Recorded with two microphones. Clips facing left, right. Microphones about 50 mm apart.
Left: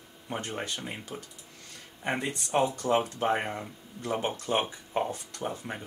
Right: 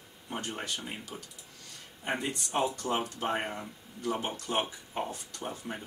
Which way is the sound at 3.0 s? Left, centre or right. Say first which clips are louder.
Left 4 dB; left.